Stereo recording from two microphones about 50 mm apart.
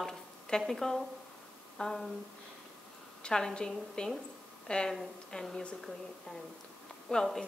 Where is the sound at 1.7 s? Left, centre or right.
Centre.